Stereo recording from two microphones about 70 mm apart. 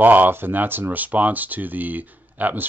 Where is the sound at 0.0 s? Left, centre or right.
Right.